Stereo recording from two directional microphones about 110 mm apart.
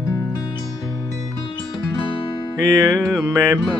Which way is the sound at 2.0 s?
55° left (ahead or behind).